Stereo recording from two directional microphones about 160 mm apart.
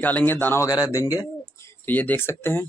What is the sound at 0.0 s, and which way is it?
Speech, 10° left (ahead or behind).